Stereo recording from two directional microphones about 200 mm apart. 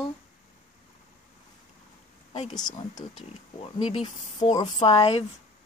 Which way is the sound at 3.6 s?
30° left (ahead or behind).